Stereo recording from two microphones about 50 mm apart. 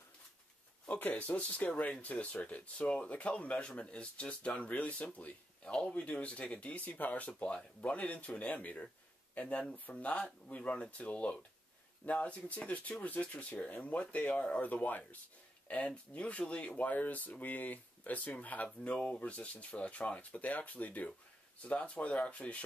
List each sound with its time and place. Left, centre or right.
0.8 s speech: left